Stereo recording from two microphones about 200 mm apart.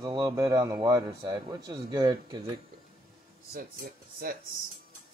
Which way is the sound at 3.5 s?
45° right (ahead or behind).